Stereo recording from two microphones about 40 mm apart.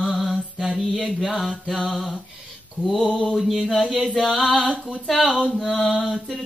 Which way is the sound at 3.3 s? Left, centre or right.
Centre.